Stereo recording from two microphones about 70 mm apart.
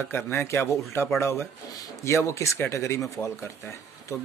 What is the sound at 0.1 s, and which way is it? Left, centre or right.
Speech, left.